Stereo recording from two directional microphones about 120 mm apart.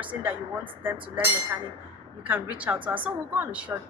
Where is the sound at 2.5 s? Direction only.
10° right (ahead or behind).